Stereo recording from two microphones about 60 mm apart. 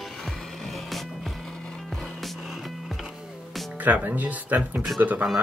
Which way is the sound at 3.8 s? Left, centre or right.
Right.